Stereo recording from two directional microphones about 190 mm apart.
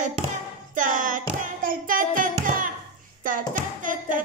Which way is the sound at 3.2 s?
45° right (ahead or behind).